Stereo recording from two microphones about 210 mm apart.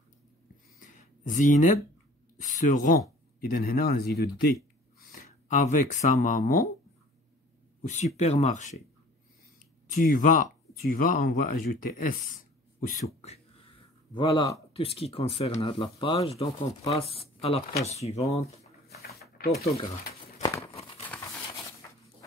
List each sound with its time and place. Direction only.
0.7 s a sound: 40° left (ahead or behind)
2.4 s speech: 40° left (ahead or behind)
5.1 s speech: 35° left (ahead or behind)
7.8 s speech: 35° left (ahead or behind)
9.9 s speech: 40° left (ahead or behind)
14.1 s speech: 20° left (ahead or behind)
18.9 s a sound: 45° left (ahead or behind)